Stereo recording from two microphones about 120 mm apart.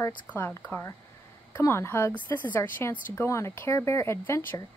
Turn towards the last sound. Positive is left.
turn(degrees=20)  # may be behind; listen again after turning